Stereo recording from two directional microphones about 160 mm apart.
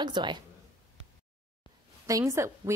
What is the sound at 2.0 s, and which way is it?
Speech, 20° right (ahead or behind).